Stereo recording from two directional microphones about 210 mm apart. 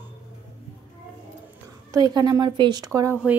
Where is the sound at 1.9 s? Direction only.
20° right (ahead or behind).